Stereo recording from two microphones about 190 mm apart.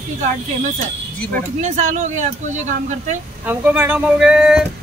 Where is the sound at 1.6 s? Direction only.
40° right (ahead or behind).